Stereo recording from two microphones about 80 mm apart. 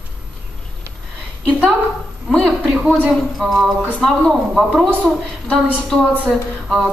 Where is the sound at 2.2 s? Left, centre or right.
Centre.